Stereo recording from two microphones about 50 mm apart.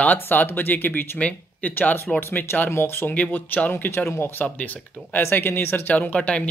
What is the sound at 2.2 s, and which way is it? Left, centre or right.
Speech, left.